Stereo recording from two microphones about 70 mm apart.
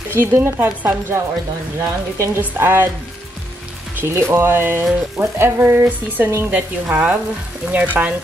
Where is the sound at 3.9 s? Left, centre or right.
Right.